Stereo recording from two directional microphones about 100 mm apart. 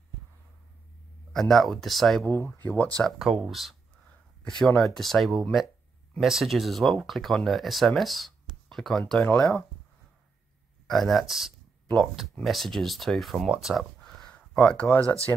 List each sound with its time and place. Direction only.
1.3 s speech: 5° left (ahead or behind)
2.2 s speech: 25° left (ahead or behind)
3.2 s speech: 5° right (ahead or behind); by 9.4 s 15° left (ahead or behind)
10.9 s speech: centre (ahead or behind)